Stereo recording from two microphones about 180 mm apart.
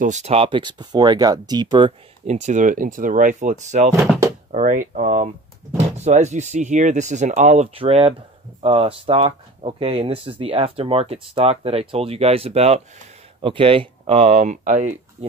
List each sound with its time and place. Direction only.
0.0 s speech: 40° right (ahead or behind)